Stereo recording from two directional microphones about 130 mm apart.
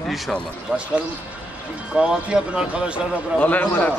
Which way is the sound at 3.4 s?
10° left (ahead or behind).